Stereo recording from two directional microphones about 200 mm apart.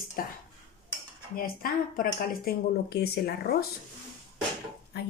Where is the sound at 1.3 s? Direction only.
45° left (ahead or behind).